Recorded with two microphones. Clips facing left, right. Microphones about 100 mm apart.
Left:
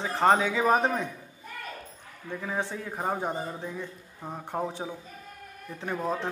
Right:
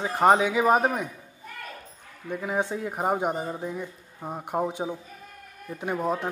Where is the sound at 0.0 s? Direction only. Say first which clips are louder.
Right 3 dB; 15° right (ahead or behind).